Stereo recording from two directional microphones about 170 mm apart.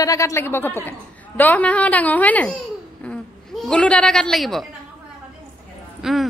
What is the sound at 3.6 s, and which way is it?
Speech, 5° left (ahead or behind).